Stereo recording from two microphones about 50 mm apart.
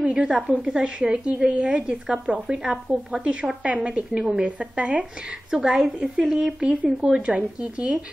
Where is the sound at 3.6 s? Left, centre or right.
Right; by 6.7 s centre.